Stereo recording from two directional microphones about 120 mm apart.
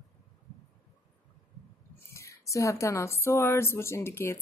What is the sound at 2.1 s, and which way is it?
Speech, 25° left (ahead or behind).